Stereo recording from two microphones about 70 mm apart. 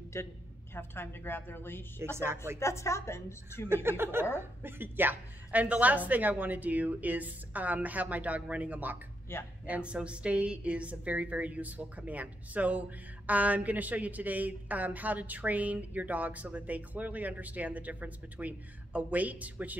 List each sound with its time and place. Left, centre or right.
0.1 s a woman's voice: left
0.7 s a woman's voice: left
2.0 s speech: right
2.6 s a woman's voice: left
3.6 s speech: right
9.3 s a woman's voice: left
9.7 s speech: centre